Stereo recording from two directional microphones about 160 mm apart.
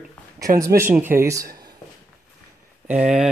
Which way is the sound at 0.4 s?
20° right (ahead or behind).